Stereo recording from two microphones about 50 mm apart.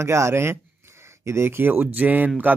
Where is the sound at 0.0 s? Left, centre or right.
Right.